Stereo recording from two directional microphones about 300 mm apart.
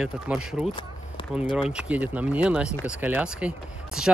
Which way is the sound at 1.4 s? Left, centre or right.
Centre.